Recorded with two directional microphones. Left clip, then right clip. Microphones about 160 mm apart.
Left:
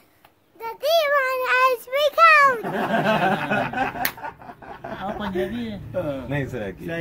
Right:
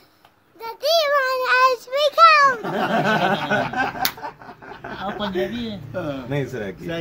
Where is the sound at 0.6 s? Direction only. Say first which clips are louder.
Right 1 dB; 5° left (ahead or behind).